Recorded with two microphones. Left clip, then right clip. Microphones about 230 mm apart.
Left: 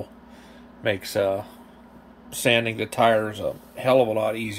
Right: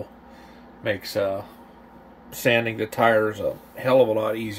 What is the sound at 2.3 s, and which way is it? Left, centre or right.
Speech, centre.